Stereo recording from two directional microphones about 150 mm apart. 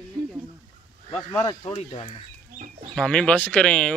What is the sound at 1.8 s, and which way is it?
Speech, 45° left (ahead or behind).